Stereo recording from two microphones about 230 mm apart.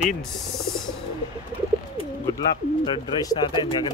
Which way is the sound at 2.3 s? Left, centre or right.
Centre.